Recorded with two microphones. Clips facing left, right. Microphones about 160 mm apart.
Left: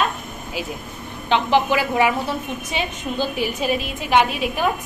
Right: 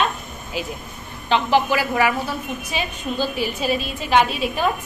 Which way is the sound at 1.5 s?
20° left (ahead or behind).